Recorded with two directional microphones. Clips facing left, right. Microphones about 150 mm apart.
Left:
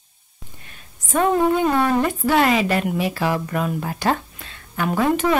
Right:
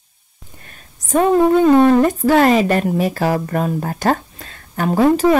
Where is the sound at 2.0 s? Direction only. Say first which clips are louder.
Right 5 dB; 40° right (ahead or behind).